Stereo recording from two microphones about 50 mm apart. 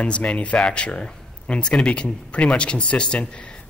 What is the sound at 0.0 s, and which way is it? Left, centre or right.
Speech, left.